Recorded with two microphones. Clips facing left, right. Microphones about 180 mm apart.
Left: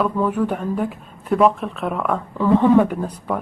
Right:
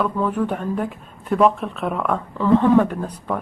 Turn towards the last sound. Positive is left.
turn(degrees=10)  # may be behind; listen again after turning